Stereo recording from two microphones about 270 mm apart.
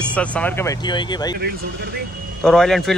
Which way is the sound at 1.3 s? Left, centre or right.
Right.